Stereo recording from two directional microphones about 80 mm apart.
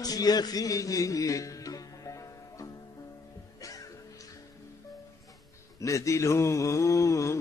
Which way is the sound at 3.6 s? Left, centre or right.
Left.